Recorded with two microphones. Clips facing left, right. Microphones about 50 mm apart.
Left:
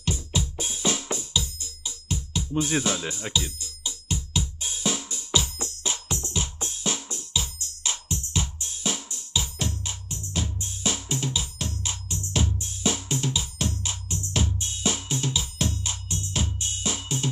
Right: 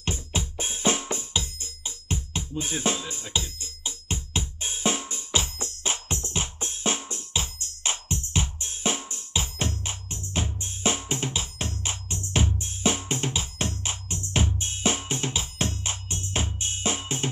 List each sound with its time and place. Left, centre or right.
0.0 s drum: right
1.1 s music: right
3.0 s music: left
3.5 s music: right